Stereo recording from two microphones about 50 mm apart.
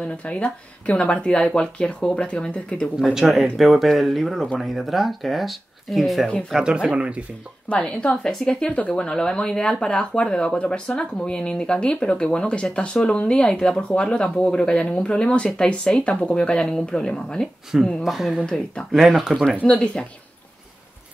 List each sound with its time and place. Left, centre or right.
0.0 s speech: left
3.2 s speech: centre
6.5 s speech: centre
7.7 s speech: left
18.0 s speech: centre
18.4 s speech: centre
18.9 s speech: centre
19.6 s speech: left